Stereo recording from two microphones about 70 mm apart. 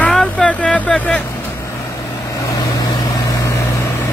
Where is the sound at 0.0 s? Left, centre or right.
Centre.